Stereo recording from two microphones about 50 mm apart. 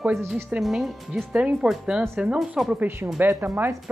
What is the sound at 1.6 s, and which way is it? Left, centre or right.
Speech, centre.